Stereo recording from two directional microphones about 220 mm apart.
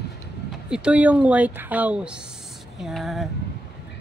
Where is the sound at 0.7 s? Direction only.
5° right (ahead or behind).